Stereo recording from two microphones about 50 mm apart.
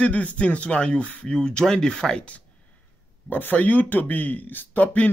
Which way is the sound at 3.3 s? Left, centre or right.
Left.